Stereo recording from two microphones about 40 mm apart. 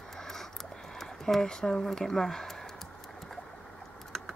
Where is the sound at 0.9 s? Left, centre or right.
Centre.